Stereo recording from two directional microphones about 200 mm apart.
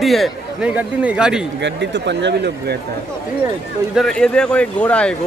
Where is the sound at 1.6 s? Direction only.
60° right (ahead or behind).